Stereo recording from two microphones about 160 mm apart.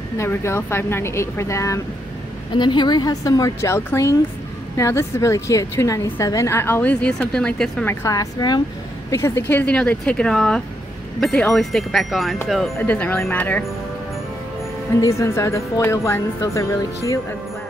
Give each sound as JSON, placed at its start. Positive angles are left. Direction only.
{"t": 0.2, "sound": "a woman's voice", "side_deg": 15}
{"t": 2.5, "sound": "a woman's voice", "side_deg": 30}
{"t": 7.9, "sound": "a woman's voice", "side_deg": 20}
{"t": 12.7, "sound": "a woman's voice", "side_deg": 10}
{"t": 15.0, "sound": "a woman's voice", "side_deg": 20}